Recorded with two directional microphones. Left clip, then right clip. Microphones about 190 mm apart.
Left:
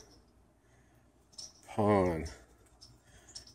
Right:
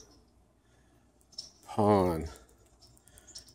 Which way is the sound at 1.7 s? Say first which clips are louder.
Right 3 dB; 30° right (ahead or behind).